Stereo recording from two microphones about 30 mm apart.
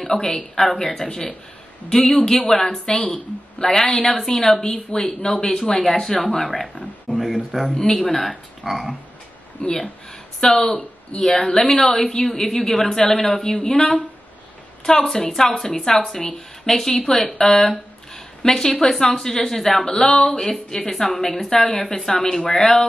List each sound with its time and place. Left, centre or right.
0.0 s speech: centre
0.7 s speech: left
3.1 s a woman's voice: left
3.7 s speech: centre
7.1 s speech: left
7.6 s speech: centre
8.6 s speech: centre
9.6 s speech: left
10.5 s speech: centre
14.9 s speech: centre
17.4 s a sound: centre
18.9 s speech: centre